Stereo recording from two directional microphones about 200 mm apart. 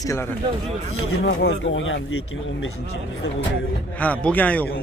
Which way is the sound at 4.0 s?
5° left (ahead or behind).